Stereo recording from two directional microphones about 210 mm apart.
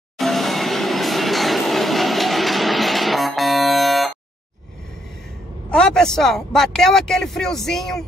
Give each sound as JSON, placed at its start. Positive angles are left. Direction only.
{"t": 0.2, "sound": "train", "side_deg": 0}
{"t": 5.7, "sound": "a man's voice", "side_deg": 5}